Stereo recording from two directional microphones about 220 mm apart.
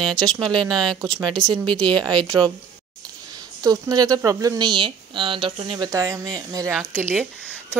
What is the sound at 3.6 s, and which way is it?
Speech, 15° right (ahead or behind).